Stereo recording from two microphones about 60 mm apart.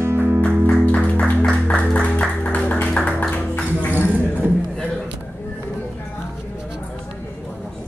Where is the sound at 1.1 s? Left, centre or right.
Left.